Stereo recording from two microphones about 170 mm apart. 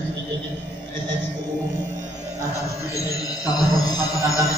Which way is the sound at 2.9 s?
20° left (ahead or behind).